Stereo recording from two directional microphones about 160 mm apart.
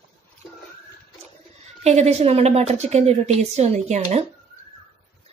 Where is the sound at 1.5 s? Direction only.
40° right (ahead or behind).